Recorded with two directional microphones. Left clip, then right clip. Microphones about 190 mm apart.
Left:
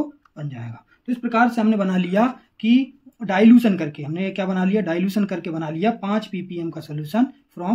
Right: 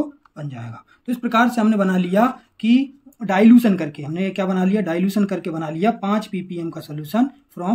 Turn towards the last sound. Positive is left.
turn(degrees=-10)  # may be behind; listen again after turning